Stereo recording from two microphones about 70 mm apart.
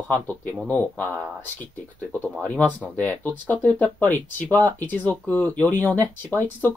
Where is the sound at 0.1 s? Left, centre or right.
Left.